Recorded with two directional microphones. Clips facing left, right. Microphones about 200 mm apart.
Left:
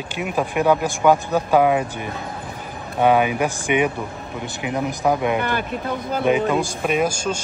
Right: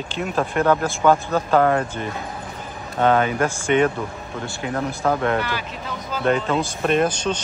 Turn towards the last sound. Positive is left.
turn(degrees=10)  # may be behind; listen again after turning